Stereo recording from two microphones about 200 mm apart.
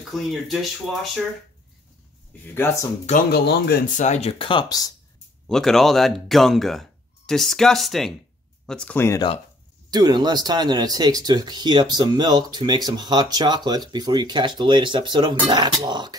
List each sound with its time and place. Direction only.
0.1 s speech: centre (ahead or behind)
2.4 s speech: 10° left (ahead or behind)
3.3 s speech: 55° left (ahead or behind)
3.9 s speech: 35° left (ahead or behind); by 4.9 s 20° left (ahead or behind)
5.5 s speech: centre (ahead or behind)
9.8 s speech: 20° right (ahead or behind)